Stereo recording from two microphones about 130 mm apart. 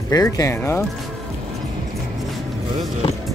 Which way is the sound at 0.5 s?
15° left (ahead or behind).